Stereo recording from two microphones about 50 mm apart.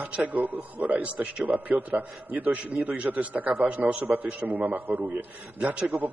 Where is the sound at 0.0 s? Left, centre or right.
Right.